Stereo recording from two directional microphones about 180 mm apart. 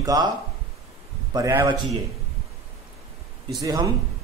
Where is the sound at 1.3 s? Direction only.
20° right (ahead or behind).